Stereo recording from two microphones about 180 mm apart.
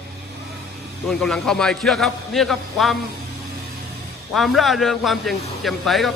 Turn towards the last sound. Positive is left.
turn(degrees=0)  # may be behind; listen again after turning